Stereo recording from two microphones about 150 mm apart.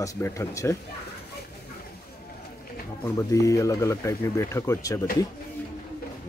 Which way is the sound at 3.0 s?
20° left (ahead or behind).